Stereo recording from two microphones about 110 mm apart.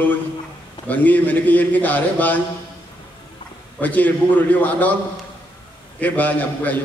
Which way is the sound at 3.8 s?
15° left (ahead or behind).